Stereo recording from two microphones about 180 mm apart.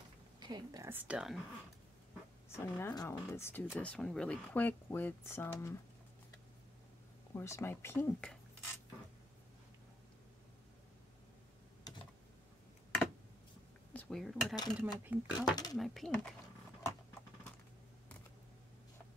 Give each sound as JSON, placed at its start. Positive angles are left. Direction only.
{"t": 0.4, "sound": "a woman's voice", "side_deg": -25}
{"t": 2.5, "sound": "speech", "side_deg": 15}
{"t": 7.3, "sound": "speech", "side_deg": 15}
{"t": 11.9, "sound": "tick-tock", "side_deg": 20}
{"t": 13.9, "sound": "speech", "side_deg": 5}
{"t": 15.5, "sound": "speech", "side_deg": 20}
{"t": 15.8, "sound": "speech", "side_deg": 0}